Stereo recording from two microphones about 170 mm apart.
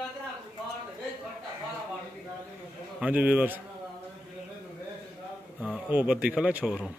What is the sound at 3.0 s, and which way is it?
Speech, 5° right (ahead or behind).